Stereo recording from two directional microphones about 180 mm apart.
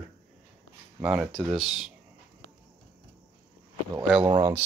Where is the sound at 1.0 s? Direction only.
5° right (ahead or behind).